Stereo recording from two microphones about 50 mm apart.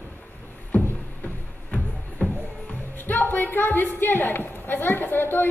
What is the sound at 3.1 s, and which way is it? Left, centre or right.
A woman's voice, left.